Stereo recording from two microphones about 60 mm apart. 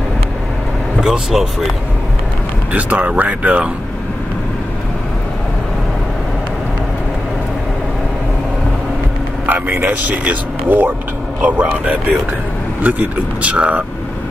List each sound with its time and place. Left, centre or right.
1.0 s speech: centre
2.7 s a man's voice: right
9.5 s a man's voice: right